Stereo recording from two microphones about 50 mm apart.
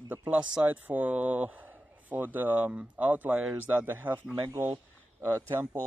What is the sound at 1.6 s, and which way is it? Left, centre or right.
Speech, right.